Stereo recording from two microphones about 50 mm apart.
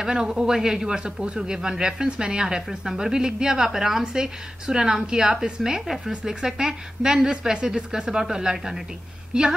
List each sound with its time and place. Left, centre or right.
0.0 s a woman's voice: centre